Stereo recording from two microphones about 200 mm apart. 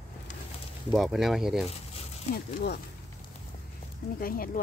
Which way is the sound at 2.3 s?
55° left (ahead or behind).